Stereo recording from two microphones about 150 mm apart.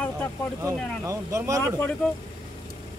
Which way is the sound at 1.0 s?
20° right (ahead or behind).